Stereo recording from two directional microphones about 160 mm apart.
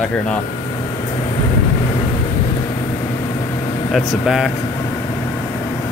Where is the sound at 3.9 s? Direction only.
Centre (ahead or behind).